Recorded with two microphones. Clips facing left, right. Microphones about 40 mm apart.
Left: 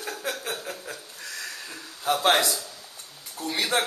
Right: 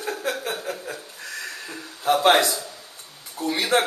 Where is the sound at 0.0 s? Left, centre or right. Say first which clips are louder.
Right 5 dB; centre.